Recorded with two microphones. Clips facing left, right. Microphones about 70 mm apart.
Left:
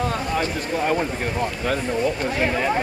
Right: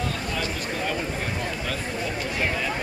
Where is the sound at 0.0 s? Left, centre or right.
Left.